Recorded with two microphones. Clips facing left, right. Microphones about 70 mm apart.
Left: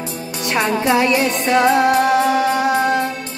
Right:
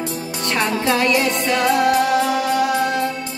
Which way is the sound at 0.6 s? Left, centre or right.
Centre.